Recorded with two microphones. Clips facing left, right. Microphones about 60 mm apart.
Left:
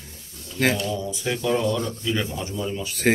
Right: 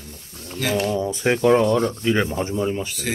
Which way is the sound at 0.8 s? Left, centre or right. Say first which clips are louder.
Right 6 dB; right.